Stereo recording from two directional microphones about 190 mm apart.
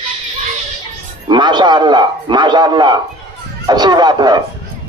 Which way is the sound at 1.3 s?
25° right (ahead or behind).